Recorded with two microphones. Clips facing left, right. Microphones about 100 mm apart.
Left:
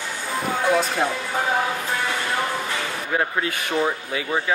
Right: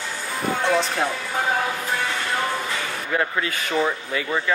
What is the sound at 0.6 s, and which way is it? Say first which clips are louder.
Speech: left 1 dB; 5° left (ahead or behind).